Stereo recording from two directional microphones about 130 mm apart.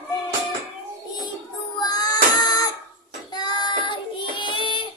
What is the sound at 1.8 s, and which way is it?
Music, 30° left (ahead or behind).